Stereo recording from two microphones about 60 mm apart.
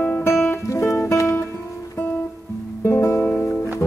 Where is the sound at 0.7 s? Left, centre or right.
Left.